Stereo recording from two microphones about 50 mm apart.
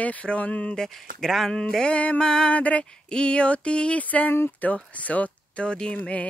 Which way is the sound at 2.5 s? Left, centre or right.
Left.